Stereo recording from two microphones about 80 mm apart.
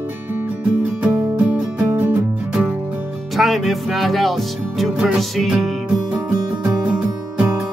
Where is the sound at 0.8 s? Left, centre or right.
Right.